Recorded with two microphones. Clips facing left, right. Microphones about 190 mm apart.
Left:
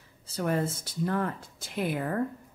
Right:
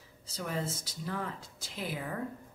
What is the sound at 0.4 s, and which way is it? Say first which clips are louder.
A woman's voice: left 7 dB; 55° left (ahead or behind).